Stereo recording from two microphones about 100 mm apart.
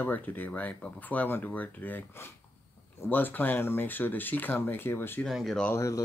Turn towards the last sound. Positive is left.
turn(degrees=30)  # may be behind; listen again after turning